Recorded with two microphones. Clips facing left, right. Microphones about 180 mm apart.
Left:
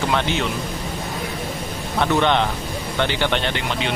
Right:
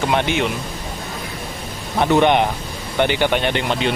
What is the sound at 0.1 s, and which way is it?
Speech, 15° right (ahead or behind).